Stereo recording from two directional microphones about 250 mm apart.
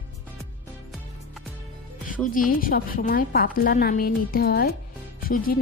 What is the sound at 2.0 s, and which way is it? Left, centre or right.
A woman's voice, left.